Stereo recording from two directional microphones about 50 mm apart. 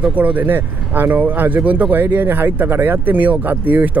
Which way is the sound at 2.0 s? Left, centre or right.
Right.